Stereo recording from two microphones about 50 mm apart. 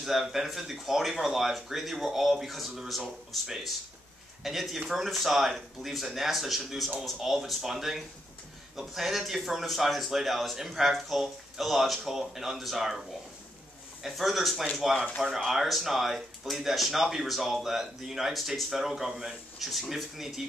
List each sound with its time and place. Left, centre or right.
0.0 s speech: centre
14.0 s speech: centre
15.0 s speech: centre
15.2 s speech: centre